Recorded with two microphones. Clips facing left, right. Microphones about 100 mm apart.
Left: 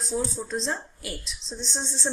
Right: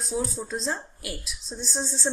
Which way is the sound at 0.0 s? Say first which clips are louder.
Even; centre (ahead or behind).